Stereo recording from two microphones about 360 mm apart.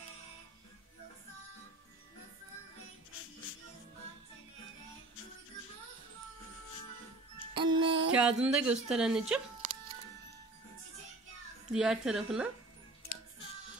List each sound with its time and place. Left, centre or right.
7.3 s music: centre
8.1 s speech: centre
11.7 s speech: centre